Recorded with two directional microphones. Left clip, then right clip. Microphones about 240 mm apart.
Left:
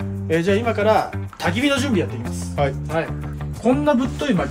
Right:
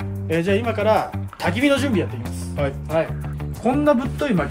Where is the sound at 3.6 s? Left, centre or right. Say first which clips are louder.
Even; centre.